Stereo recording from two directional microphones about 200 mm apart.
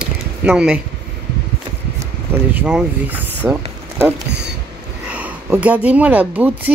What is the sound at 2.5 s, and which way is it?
Speech, 5° right (ahead or behind).